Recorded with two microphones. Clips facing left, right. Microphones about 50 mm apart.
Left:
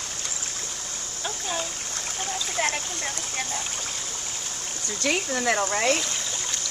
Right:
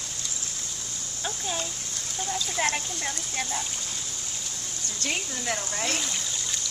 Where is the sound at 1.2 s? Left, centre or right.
Centre.